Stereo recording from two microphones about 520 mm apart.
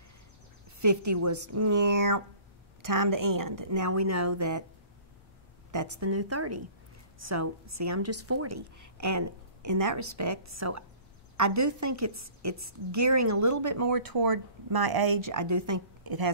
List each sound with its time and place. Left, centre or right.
0.7 s a woman's voice: right
5.7 s a woman's voice: right